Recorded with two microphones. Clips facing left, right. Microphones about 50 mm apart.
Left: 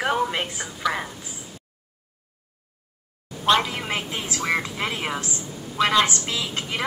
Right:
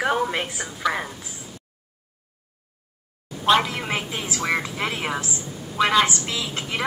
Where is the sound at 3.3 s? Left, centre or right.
Centre.